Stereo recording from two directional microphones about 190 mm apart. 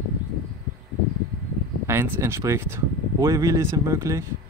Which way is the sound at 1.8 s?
15° right (ahead or behind).